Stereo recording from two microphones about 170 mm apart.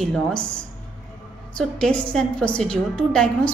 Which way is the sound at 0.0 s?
Centre (ahead or behind).